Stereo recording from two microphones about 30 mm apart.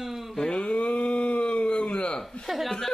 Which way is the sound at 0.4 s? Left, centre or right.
Left.